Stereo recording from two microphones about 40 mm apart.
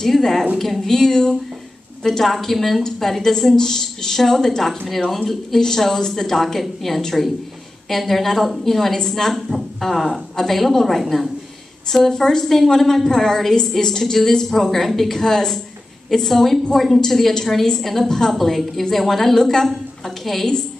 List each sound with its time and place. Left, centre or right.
0.0 s a woman's voice: centre
11.9 s a woman's voice: centre